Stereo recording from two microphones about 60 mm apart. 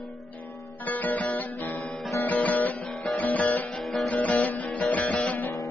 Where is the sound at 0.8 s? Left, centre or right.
Left.